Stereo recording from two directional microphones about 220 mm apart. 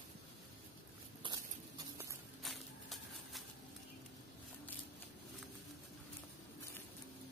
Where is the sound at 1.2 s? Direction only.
20° right (ahead or behind).